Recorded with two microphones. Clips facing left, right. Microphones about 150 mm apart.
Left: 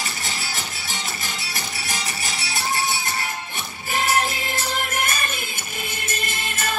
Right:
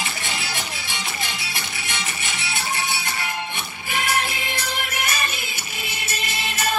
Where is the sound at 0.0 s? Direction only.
40° left (ahead or behind).